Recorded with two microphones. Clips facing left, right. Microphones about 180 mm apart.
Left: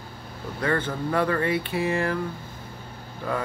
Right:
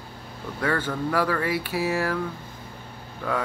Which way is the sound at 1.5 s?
5° right (ahead or behind).